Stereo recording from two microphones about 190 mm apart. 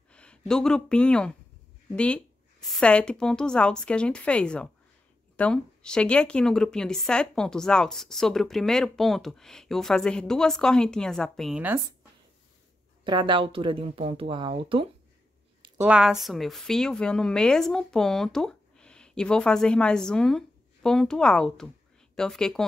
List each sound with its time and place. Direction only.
0.1 s speech: 5° left (ahead or behind)
13.0 s speech: 25° right (ahead or behind)
15.8 s speech: 5° right (ahead or behind)